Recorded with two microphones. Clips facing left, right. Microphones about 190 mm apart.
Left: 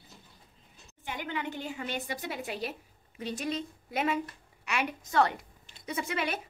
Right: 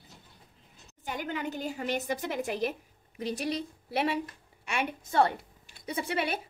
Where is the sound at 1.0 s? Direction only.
45° right (ahead or behind).